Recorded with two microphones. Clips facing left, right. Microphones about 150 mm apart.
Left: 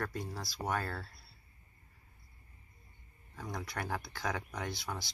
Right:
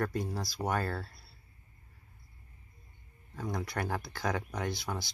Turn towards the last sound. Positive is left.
turn(degrees=0)  # may be behind; listen again after turning